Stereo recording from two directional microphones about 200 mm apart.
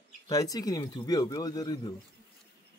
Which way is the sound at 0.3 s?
15° left (ahead or behind).